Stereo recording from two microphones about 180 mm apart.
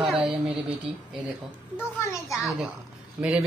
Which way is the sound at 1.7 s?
15° left (ahead or behind).